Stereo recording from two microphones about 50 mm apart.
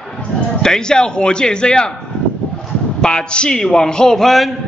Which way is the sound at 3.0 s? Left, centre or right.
Centre.